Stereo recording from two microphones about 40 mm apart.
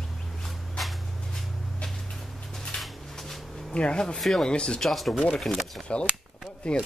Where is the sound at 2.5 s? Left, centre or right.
Centre.